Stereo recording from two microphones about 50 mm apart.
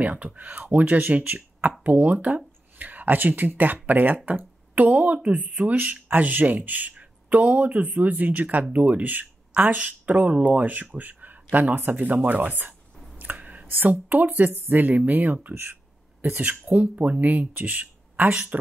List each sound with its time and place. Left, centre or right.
0.0 s speech: right
1.2 s speech: right
1.7 s speech: right
13.2 s a sound: right
13.7 s speech: right
15.5 s speech: right